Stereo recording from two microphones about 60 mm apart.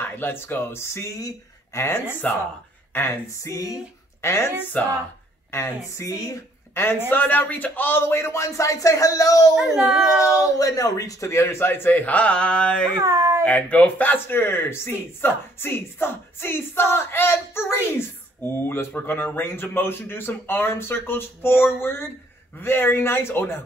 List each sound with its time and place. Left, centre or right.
0.0 s speech: left
3.4 s a sound: left
4.2 s speech: left
4.7 s speech: left
5.9 s a sound: left
6.7 s speech: left
8.1 s speech: left
9.6 s a child's voice: centre
10.2 s speech: left; by 12.9 s centre
13.0 s a sound: right
13.4 s speech: left